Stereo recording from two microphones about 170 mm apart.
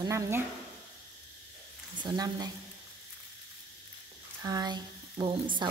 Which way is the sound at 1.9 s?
25° right (ahead or behind).